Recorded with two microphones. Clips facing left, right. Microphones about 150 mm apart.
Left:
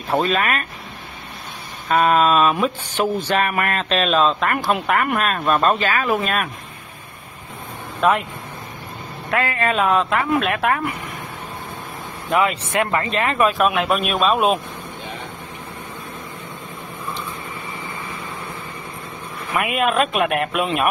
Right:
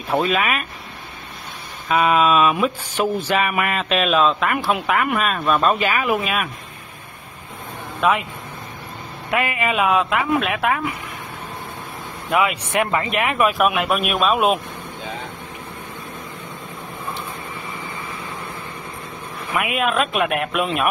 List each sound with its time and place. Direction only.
0.1 s speech: 5° right (ahead or behind)
1.9 s speech: 5° right (ahead or behind)
5.8 s speech: 15° right (ahead or behind)
6.1 s speech: centre (ahead or behind)
8.0 s speech: centre (ahead or behind)
9.3 s speech: 15° right (ahead or behind); by 10.9 s centre (ahead or behind)
12.3 s speech: 5° right (ahead or behind)
19.5 s speech: centre (ahead or behind)